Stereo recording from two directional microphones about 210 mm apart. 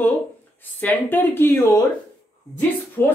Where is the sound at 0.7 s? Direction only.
10° left (ahead or behind).